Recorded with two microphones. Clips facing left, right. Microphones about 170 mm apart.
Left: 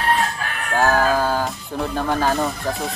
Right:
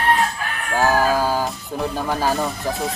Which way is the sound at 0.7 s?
10° right (ahead or behind).